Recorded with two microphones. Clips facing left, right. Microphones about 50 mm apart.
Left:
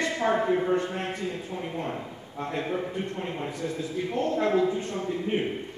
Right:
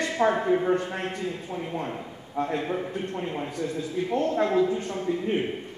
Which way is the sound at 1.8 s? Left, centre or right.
Centre.